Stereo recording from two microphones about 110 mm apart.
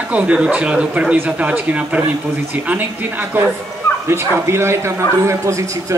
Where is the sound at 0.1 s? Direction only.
10° right (ahead or behind).